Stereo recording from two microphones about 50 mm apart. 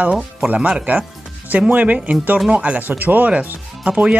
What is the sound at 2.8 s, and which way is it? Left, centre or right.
Speech, right.